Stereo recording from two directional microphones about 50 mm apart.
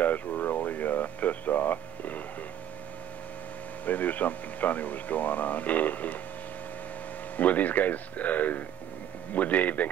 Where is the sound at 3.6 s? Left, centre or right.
Left.